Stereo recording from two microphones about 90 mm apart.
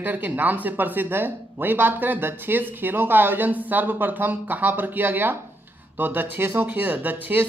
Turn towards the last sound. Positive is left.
turn(degrees=-20)  # may be behind; listen again after turning